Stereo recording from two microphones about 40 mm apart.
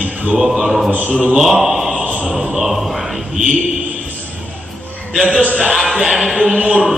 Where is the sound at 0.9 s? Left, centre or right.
Right.